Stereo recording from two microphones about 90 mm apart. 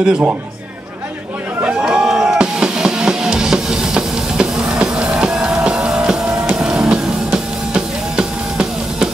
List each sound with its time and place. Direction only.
0.0 s speech: 15° right (ahead or behind)
1.6 s music: 15° right (ahead or behind)